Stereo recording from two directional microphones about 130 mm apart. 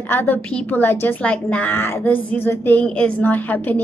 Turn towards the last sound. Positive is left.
turn(degrees=15)  # may be behind; listen again after turning